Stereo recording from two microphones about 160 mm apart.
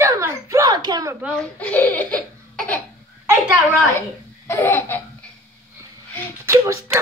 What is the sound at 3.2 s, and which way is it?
Speech, 10° right (ahead or behind).